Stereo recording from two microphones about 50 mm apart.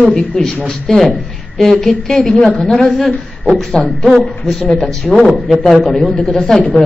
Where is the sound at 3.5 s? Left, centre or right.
Centre.